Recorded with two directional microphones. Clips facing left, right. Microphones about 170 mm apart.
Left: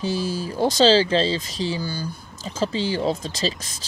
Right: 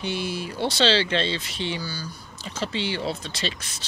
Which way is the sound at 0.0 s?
35° left (ahead or behind).